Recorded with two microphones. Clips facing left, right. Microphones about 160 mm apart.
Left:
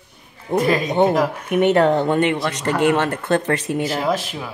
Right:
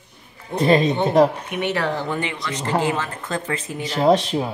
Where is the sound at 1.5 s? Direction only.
50° left (ahead or behind); by 3.8 s 70° left (ahead or behind).